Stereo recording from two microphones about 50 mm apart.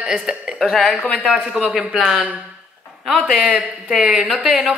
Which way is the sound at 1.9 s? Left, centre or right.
Centre.